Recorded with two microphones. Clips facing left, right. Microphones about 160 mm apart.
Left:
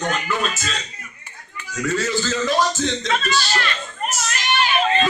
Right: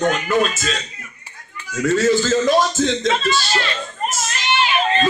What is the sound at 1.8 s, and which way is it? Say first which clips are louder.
Speech: right 6 dB; 50° right (ahead or behind).